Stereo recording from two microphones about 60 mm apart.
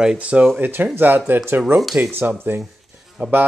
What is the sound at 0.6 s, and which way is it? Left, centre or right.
Speech, right.